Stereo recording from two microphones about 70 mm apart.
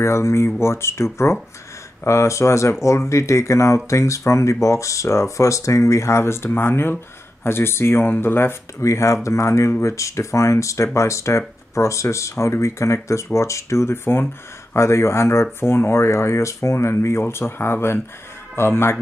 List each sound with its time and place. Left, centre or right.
0.0 s speech: left
8.8 s speech: left